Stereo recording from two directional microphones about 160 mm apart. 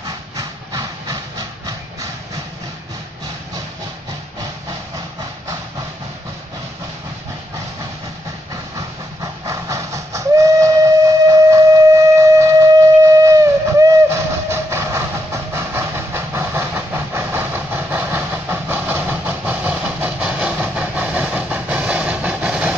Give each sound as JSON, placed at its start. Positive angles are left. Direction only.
{"t": 0.0, "sound": "train", "side_deg": -25}
{"t": 8.7, "sound": "train", "side_deg": -20}